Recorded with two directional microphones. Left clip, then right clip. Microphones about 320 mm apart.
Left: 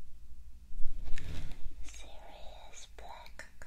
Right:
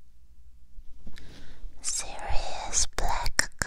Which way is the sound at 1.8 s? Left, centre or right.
Right.